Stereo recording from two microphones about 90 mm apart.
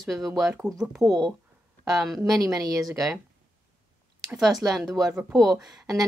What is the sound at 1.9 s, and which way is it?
Speech, centre (ahead or behind).